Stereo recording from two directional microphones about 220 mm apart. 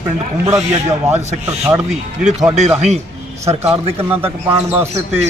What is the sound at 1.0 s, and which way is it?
Speech, 30° right (ahead or behind).